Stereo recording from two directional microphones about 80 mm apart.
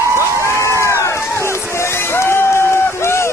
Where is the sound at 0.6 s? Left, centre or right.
Left.